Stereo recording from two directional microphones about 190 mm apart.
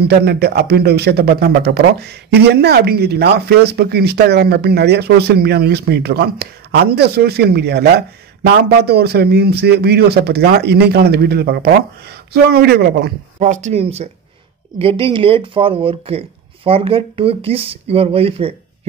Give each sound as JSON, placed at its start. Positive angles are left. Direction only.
{"t": 0.0, "sound": "a man's voice", "side_deg": -60}
{"t": 13.4, "sound": "speech", "side_deg": -40}